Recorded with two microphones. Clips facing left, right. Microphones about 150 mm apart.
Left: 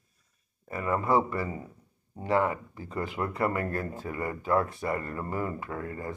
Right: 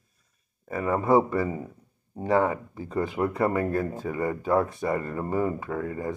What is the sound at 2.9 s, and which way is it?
Speech, 20° right (ahead or behind).